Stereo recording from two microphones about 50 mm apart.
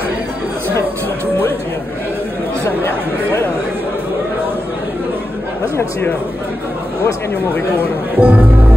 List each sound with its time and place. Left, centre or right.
8.2 s speech: right